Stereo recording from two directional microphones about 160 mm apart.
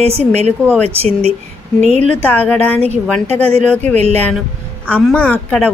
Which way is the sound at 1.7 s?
45° right (ahead or behind).